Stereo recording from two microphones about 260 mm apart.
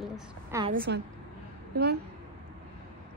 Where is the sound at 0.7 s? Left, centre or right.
Right.